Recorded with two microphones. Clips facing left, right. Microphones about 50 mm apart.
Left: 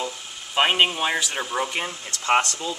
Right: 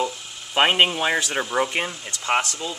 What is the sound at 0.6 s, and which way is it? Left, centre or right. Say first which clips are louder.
Speech: right 1 dB; centre.